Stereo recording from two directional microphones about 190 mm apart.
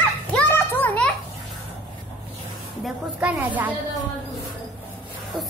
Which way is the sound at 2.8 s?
5° right (ahead or behind).